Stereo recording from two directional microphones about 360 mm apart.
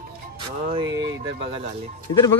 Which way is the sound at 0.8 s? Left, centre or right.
Right.